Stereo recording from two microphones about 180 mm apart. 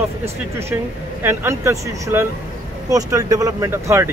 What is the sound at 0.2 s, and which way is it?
Speech, 15° right (ahead or behind).